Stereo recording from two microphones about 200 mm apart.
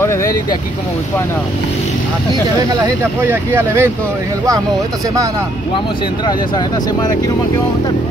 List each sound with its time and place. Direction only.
0.0 s speech: 15° left (ahead or behind)
2.7 s speech: 10° right (ahead or behind)
6.2 s speech: 20° left (ahead or behind)